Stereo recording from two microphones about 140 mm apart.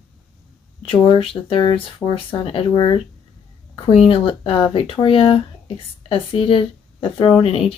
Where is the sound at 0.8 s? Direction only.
40° left (ahead or behind).